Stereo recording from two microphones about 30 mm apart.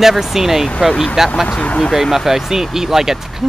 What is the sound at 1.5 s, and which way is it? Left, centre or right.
Speech, left.